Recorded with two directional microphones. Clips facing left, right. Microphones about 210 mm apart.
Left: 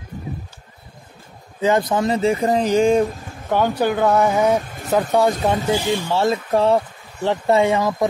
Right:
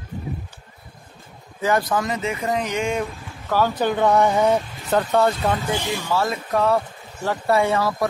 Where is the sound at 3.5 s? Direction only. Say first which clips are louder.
Left 2 dB; 20° left (ahead or behind).